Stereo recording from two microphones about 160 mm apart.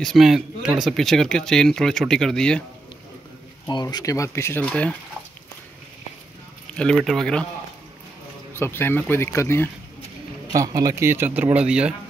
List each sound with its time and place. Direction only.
0.0 s speech: centre (ahead or behind)
3.6 s speech: 25° left (ahead or behind); by 4.9 s 10° left (ahead or behind)
6.7 s speech: 5° left (ahead or behind)
8.5 s speech: 15° left (ahead or behind)
10.5 s a man's voice: 20° right (ahead or behind)